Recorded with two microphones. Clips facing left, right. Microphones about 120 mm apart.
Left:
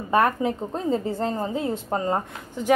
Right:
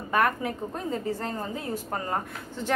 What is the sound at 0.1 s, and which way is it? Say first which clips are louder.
A woman's voice: left 4 dB; 25° left (ahead or behind).